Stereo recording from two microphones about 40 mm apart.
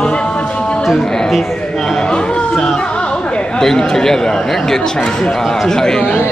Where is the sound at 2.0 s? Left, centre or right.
Left.